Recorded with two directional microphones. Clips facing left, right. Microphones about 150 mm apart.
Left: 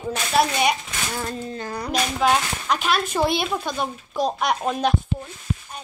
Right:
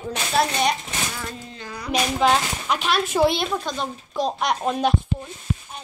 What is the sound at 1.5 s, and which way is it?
Speech, 45° left (ahead or behind).